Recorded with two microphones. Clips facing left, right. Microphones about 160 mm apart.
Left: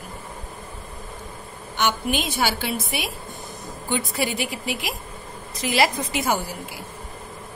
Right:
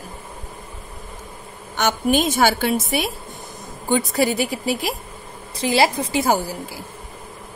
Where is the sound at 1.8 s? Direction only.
45° right (ahead or behind).